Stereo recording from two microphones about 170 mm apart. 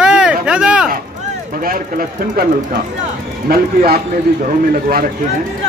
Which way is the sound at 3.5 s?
65° right (ahead or behind).